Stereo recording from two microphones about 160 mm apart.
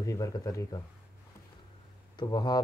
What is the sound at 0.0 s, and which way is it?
Speech, 20° left (ahead or behind).